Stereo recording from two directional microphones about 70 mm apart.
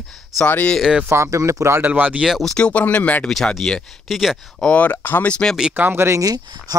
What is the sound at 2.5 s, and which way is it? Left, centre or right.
Speech, centre.